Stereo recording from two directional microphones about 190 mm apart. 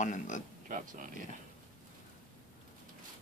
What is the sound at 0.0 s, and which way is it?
Speech, 40° left (ahead or behind).